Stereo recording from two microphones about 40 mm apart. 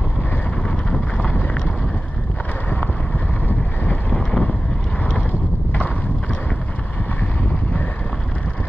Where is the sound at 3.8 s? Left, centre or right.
Left.